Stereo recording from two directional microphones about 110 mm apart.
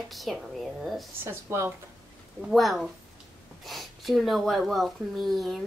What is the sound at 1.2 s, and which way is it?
Speech, 25° right (ahead or behind).